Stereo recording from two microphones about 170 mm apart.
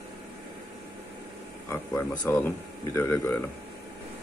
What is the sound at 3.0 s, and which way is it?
Speech, 15° left (ahead or behind).